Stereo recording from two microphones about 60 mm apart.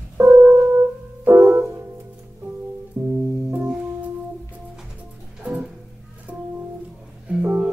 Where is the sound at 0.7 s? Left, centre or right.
Right.